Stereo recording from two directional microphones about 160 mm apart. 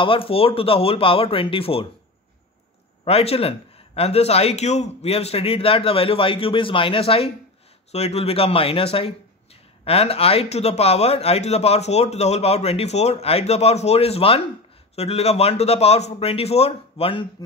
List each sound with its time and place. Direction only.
0.0 s a man's voice: 35° left (ahead or behind)
3.1 s a man's voice: 40° left (ahead or behind)